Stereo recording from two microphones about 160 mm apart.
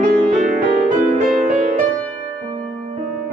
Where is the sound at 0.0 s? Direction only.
50° right (ahead or behind).